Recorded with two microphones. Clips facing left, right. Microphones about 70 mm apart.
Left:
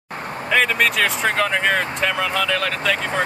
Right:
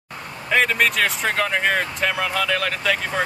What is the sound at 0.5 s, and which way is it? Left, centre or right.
Speech, centre.